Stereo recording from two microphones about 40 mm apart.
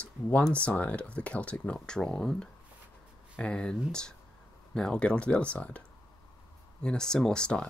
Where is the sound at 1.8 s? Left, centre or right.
Centre.